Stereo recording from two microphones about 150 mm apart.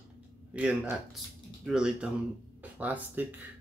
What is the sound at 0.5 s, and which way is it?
Speech, 10° right (ahead or behind).